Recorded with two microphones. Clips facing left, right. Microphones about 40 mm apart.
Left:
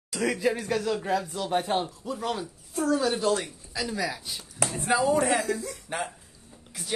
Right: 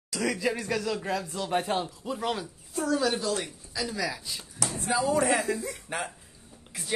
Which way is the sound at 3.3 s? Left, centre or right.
Left.